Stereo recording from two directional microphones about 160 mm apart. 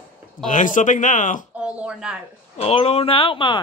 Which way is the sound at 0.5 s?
55° left (ahead or behind).